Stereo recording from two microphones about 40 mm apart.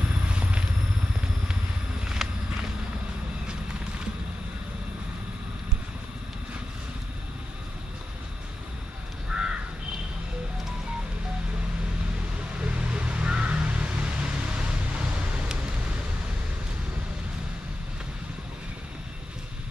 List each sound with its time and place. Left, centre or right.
0.3 s vehicle: right
2.2 s walk: centre
9.3 s crow: centre
12.6 s a sound: right